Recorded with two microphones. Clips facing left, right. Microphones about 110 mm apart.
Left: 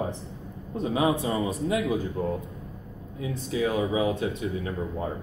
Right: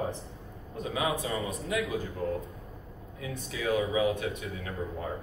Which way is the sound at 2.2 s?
20° left (ahead or behind).